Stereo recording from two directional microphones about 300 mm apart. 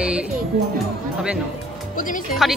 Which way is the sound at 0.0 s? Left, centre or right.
Centre.